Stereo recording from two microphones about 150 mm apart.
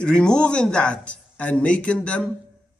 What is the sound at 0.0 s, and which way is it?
A man's voice, 5° left (ahead or behind).